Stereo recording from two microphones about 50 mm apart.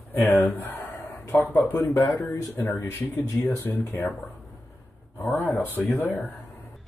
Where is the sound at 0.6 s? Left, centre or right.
Left.